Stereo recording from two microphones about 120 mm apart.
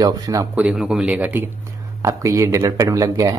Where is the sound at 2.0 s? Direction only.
25° right (ahead or behind).